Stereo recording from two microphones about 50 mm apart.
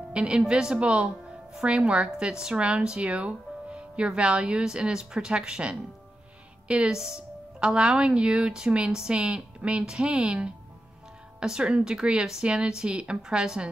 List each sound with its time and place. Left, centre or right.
0.1 s speech: right